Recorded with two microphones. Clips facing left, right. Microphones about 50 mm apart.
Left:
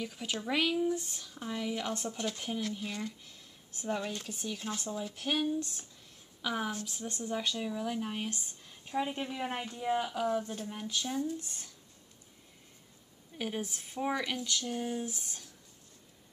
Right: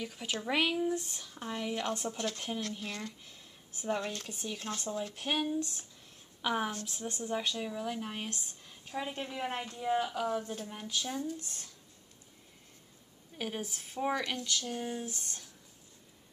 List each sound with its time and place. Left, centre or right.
0.0 s speech: centre
0.9 s speech: centre
3.3 s a sound: centre
4.0 s speech: centre
4.3 s speech: centre
6.4 s speech: centre
13.4 s speech: centre